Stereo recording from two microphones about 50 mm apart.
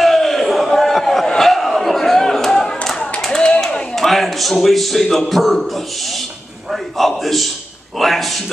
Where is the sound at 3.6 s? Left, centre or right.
Centre.